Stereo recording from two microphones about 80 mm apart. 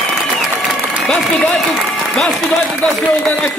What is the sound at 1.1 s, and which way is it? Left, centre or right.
Speech, centre.